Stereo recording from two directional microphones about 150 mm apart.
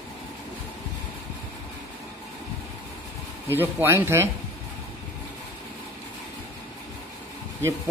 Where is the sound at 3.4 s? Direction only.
15° right (ahead or behind).